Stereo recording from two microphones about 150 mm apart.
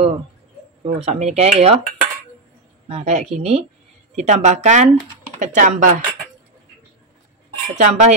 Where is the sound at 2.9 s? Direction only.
45° right (ahead or behind).